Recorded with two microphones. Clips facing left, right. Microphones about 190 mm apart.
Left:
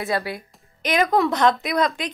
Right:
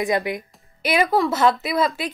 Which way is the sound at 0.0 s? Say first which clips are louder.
Right 3 dB; 15° right (ahead or behind).